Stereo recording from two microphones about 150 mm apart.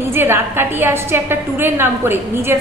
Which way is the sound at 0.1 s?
15° right (ahead or behind).